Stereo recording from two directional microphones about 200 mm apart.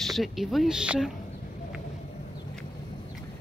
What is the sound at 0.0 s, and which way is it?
Speech, centre (ahead or behind).